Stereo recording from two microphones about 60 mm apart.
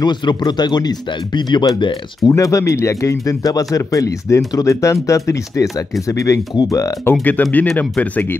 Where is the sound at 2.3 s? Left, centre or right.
Left.